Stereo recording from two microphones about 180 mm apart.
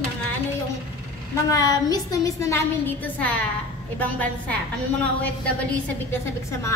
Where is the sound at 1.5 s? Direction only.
20° left (ahead or behind).